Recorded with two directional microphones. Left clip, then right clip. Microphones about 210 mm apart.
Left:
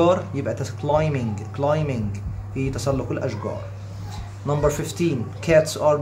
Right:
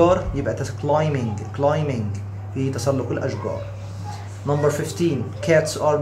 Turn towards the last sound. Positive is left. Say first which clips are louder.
# left 1 dB
turn(degrees=25)  # may be behind; listen again after turning